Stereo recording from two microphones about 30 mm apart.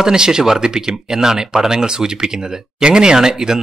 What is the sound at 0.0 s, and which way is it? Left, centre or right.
Speech, right.